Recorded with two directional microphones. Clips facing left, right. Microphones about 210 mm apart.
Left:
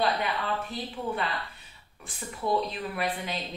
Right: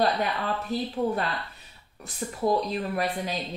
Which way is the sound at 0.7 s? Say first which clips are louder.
Right 7 dB; 40° right (ahead or behind).